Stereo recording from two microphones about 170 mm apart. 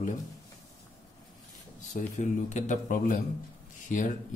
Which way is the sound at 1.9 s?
45° left (ahead or behind).